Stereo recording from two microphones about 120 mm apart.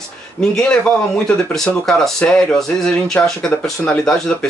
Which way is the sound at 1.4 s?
5° left (ahead or behind).